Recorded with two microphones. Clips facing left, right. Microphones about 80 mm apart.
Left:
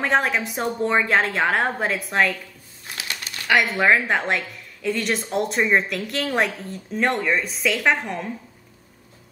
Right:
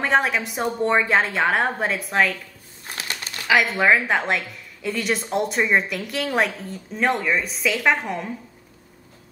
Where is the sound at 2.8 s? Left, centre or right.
Right.